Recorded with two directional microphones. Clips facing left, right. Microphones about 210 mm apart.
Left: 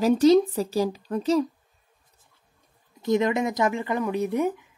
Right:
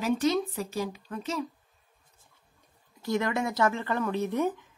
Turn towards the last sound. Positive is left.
turn(degrees=10)  # may be behind; listen again after turning